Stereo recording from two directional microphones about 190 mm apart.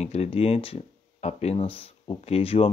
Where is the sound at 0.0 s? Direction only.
35° left (ahead or behind).